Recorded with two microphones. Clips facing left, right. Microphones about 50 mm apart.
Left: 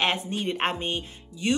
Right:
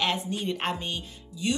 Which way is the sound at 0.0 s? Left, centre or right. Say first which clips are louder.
Left 2 dB; left.